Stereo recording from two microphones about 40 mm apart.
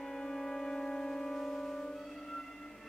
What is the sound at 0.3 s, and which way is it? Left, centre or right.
Music, centre.